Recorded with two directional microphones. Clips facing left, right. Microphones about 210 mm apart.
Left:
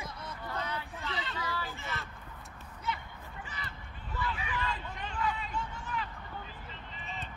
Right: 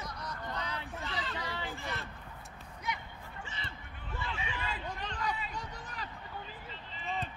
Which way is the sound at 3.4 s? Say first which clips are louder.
Even; 25° right (ahead or behind).